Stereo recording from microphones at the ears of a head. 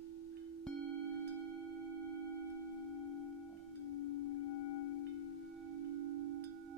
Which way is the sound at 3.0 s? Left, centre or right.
Left.